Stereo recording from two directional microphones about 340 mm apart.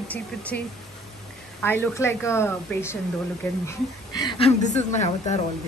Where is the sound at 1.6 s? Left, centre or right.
Centre.